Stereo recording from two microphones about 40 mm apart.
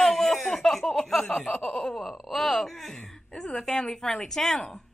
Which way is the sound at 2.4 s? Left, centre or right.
Centre.